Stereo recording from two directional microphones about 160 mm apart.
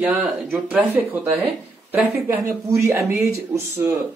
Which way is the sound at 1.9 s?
10° right (ahead or behind).